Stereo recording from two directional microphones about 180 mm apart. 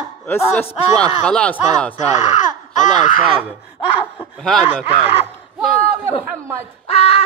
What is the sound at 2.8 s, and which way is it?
Speech, 45° left (ahead or behind).